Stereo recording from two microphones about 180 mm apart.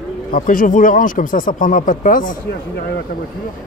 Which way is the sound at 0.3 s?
50° left (ahead or behind).